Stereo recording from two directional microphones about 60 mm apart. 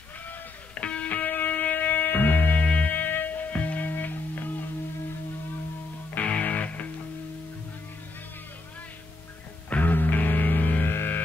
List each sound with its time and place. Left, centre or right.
0.7 s music: centre
6.1 s music: left
9.7 s music: left